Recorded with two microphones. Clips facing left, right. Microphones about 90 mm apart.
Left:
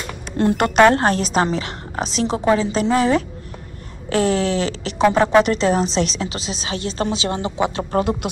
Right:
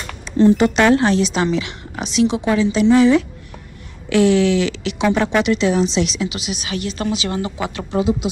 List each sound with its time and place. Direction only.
0.4 s a woman's voice: 55° left (ahead or behind); by 7.8 s 30° left (ahead or behind)
7.9 s speech: 55° left (ahead or behind)